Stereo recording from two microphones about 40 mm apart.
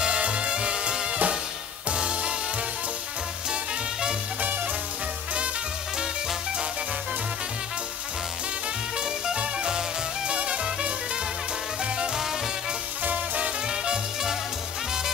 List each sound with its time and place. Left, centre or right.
0.0 s music: right
1.9 s music: right
9.4 s music: right
13.0 s swing music: right
13.7 s music: centre